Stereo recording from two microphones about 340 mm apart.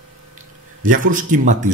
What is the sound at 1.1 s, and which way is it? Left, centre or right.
Speech, right.